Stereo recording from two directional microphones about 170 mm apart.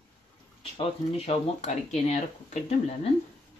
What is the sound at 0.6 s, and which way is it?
Speech, 35° left (ahead or behind).